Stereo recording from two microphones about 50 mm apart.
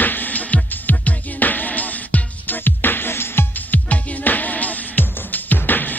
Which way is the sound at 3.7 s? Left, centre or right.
Left.